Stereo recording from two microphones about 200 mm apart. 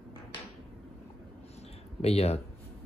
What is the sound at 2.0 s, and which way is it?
Speech, 30° left (ahead or behind).